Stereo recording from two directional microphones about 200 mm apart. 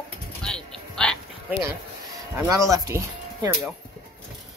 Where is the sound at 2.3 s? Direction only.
15° right (ahead or behind).